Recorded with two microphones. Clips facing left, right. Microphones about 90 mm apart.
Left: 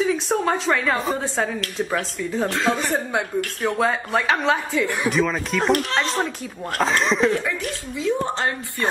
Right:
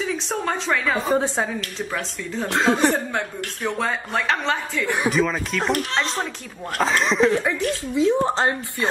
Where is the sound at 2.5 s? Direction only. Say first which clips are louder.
Right 5 dB; 20° right (ahead or behind).